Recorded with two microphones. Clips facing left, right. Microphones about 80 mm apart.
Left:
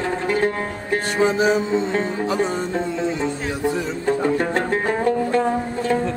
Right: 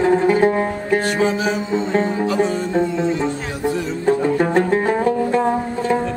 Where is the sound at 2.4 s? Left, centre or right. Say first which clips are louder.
Right 4 dB; centre.